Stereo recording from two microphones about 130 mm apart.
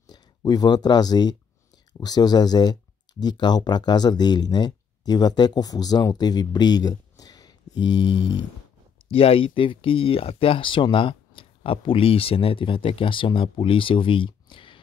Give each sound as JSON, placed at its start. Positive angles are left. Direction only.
{"t": 0.0, "sound": "speech", "side_deg": 30}
{"t": 9.1, "sound": "speech", "side_deg": 45}